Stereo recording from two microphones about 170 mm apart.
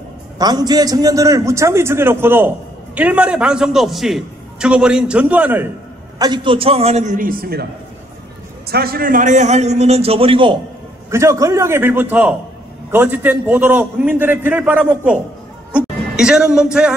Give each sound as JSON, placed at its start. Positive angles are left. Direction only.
{"t": 0.4, "sound": "a man's voice", "side_deg": -25}
{"t": 6.1, "sound": "a man's voice", "side_deg": -25}
{"t": 8.6, "sound": "a man's voice", "side_deg": -65}
{"t": 11.1, "sound": "a man's voice", "side_deg": -15}